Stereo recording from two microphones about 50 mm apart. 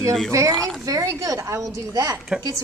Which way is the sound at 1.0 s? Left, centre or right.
Right.